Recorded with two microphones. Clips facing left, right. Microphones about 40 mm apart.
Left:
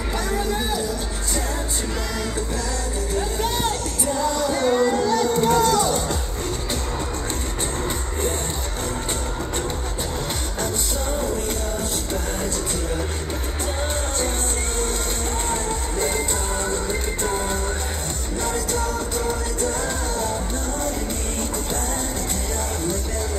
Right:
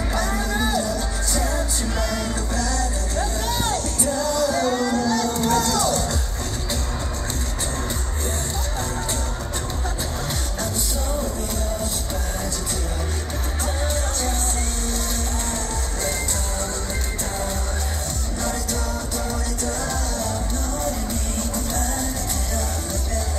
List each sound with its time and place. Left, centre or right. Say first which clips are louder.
0.1 s music: left 1 dB; centre
3.2 s music: left 1 dB; left